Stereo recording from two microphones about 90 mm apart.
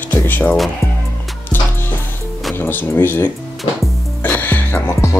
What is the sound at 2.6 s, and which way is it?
Speech, 20° left (ahead or behind).